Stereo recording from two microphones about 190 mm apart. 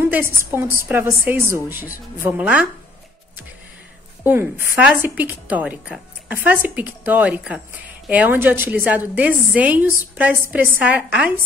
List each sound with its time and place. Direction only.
0.0 s a woman's voice: 10° right (ahead or behind)
4.2 s a woman's voice: 10° right (ahead or behind)